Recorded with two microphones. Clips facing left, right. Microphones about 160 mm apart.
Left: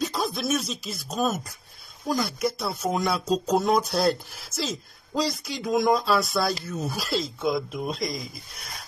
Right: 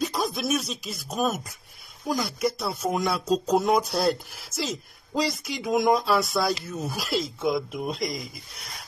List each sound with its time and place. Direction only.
0.1 s speech: 10° right (ahead or behind)
5.1 s speech: 15° right (ahead or behind)